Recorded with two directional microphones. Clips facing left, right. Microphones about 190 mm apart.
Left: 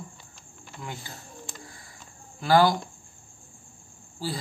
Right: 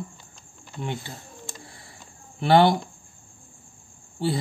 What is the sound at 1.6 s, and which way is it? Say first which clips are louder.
Bird: right 1 dB; 30° right (ahead or behind).